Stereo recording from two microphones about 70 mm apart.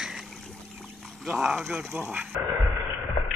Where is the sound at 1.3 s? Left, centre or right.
Centre.